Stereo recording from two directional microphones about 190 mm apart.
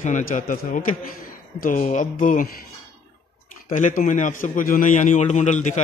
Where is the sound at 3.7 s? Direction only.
40° left (ahead or behind).